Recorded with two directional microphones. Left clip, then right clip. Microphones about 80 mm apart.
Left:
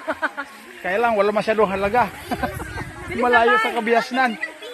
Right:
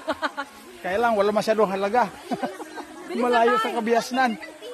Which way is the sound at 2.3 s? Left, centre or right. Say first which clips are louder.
Left 4 dB; left.